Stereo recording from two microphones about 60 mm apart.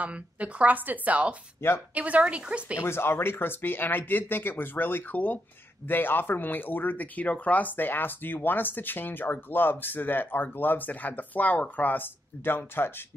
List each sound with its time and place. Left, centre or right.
0.0 s speech: right
1.6 s speech: left
2.0 s speech: right
2.8 s speech: left